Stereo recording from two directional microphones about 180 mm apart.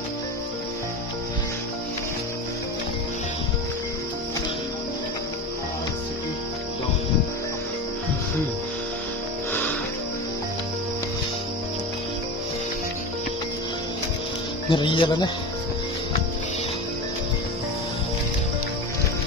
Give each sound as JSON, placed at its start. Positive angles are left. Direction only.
{"t": 9.5, "sound": "music", "side_deg": 10}
{"t": 14.7, "sound": "speech", "side_deg": 30}